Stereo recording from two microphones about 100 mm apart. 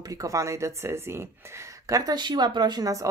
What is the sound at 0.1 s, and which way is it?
Speech, 35° right (ahead or behind).